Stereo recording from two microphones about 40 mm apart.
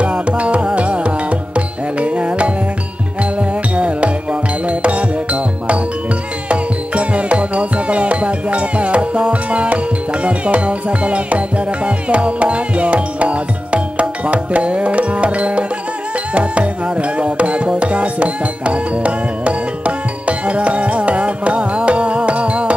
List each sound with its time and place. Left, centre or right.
0.0 s music: right